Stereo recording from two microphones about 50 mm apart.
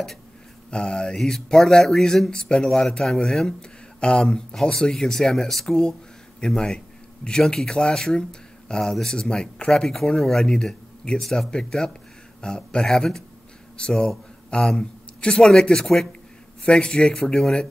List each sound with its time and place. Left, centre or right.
0.7 s speech: centre
9.8 s a man's voice: centre